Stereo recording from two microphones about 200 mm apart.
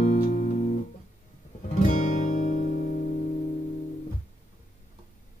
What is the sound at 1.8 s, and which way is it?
Music, 40° left (ahead or behind).